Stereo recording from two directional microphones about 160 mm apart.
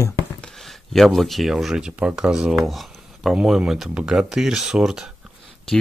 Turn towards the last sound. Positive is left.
turn(degrees=-5)  # may be behind; listen again after turning